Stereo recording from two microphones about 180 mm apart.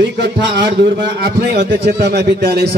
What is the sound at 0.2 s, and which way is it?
A man's voice, 65° right (ahead or behind).